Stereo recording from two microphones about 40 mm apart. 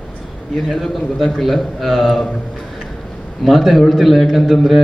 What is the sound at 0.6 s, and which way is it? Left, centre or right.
A man's voice, centre.